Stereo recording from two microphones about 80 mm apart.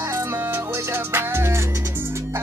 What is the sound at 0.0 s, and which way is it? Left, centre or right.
Music, right.